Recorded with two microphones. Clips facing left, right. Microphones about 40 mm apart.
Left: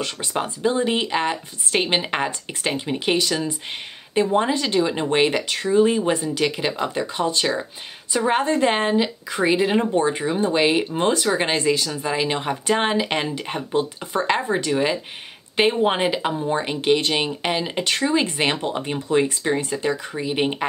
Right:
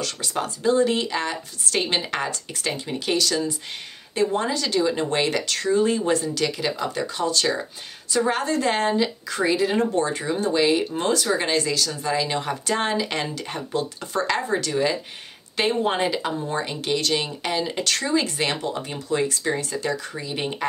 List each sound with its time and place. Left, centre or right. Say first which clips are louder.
0.0 s speech: left 2 dB; left